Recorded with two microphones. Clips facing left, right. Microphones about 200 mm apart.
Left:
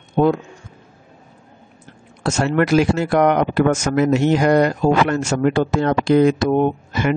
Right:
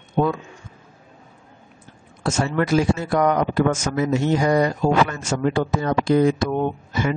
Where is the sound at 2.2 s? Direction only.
70° left (ahead or behind).